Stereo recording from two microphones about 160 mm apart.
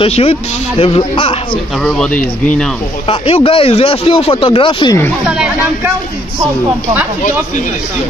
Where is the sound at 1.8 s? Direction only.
5° left (ahead or behind).